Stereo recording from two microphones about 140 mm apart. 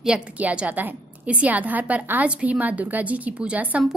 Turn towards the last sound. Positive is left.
turn(degrees=-10)  # may be behind; listen again after turning